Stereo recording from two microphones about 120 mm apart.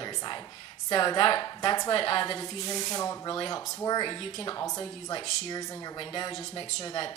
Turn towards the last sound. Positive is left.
turn(degrees=35)  # may be behind; listen again after turning